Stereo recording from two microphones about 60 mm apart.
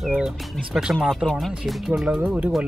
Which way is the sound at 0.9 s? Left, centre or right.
Centre.